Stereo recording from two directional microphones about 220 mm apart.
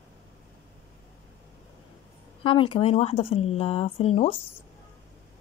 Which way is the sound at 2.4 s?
25° left (ahead or behind).